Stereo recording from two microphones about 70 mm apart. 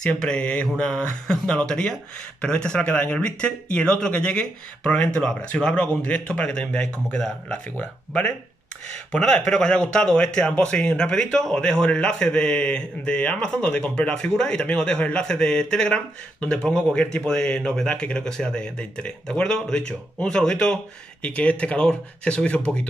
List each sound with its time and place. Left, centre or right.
0.0 s a man's voice: centre